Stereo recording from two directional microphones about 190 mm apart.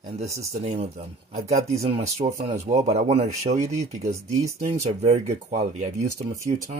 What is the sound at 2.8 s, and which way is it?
Speech, 35° right (ahead or behind).